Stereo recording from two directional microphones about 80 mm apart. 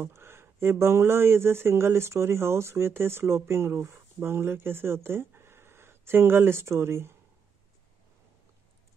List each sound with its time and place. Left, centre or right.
0.0 s speech: right